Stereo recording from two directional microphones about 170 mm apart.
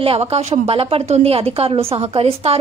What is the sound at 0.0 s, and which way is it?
A woman's voice, 35° right (ahead or behind).